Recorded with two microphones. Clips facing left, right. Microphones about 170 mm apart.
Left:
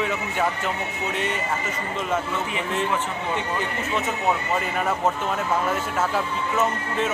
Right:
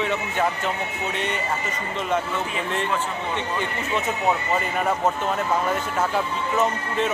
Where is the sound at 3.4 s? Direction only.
5° left (ahead or behind).